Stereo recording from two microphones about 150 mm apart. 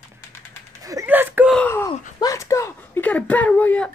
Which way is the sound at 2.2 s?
20° left (ahead or behind).